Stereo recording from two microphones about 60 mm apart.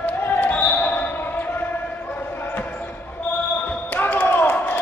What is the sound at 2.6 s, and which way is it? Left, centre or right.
Basketball bounce, left.